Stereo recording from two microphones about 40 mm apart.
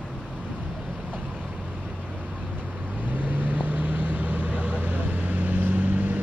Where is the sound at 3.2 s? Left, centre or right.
Right.